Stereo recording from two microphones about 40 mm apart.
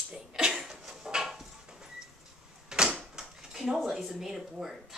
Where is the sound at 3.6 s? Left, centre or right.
Centre.